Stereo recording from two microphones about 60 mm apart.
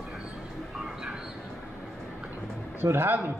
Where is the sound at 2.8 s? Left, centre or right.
Right.